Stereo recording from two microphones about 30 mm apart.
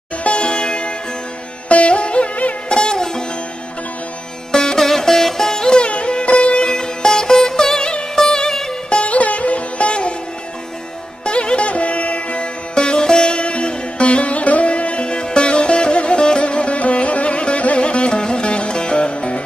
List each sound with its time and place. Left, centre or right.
0.2 s sitar: left
1.7 s music: left
2.7 s sitar: left
4.5 s music: left
4.7 s music: centre
5.8 s music: left
6.7 s music: left
7.1 s sitar: centre
8.3 s music: left
8.9 s sitar: left
11.2 s music: left
12.7 s sitar: left
17.7 s music: left